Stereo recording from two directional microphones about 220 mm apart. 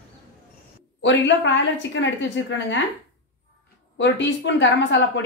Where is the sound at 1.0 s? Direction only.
55° left (ahead or behind).